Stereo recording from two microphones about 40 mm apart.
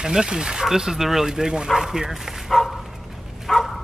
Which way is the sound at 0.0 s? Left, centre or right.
Centre.